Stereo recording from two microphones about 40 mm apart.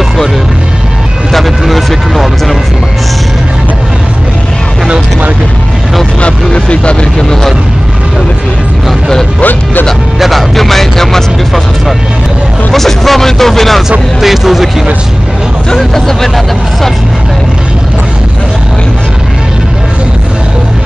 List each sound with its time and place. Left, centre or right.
1.3 s vehicle: centre
6.2 s vehicle: left
9.4 s speech: left
10.1 s speech: centre
12.7 s speech: centre
14.2 s speech: centre
15.8 s speech: centre